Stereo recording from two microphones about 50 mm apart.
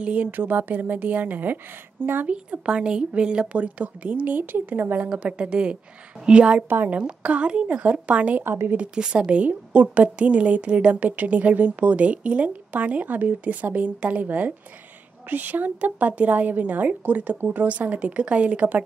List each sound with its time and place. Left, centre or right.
0.0 s a woman's voice: right
2.2 s a woman's voice: right
5.1 s a woman's voice: right
17.4 s speech: right
17.6 s a woman's voice: right